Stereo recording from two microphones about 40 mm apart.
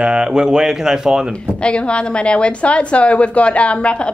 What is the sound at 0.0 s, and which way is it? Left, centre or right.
Speech, centre.